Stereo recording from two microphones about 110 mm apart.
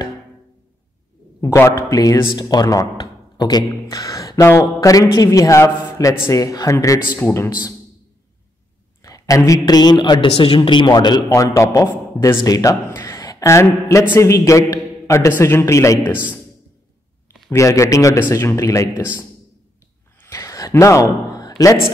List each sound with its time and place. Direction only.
1.4 s a man's voice: 25° left (ahead or behind)
3.0 s a sound: 40° left (ahead or behind)
3.9 s a man's voice: 30° left (ahead or behind)
9.0 s a sound: 35° left (ahead or behind)
9.5 s a man's voice: 35° left (ahead or behind)
10.3 s a man's voice: 55° left (ahead or behind); by 16.0 s 30° left (ahead or behind)
17.5 s a man's voice: 30° left (ahead or behind)
20.2 s a sound: 30° left (ahead or behind)
20.7 s a man's voice: 30° left (ahead or behind)